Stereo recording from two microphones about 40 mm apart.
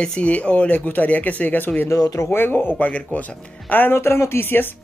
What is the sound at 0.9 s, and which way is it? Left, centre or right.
Speech, left.